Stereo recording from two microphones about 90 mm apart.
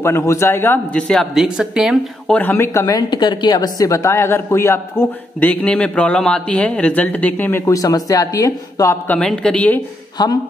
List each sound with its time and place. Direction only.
0.0 s a woman's voice: 30° left (ahead or behind)
0.9 s speech: 10° left (ahead or behind)
1.3 s a woman's voice: 5° right (ahead or behind)
2.5 s speech: 30° left (ahead or behind)
2.9 s a woman's voice: 55° left (ahead or behind); by 7.6 s 20° left (ahead or behind)
7.6 s speech: 40° left (ahead or behind)
9.0 s speech: 15° left (ahead or behind)
10.2 s speech: 55° left (ahead or behind)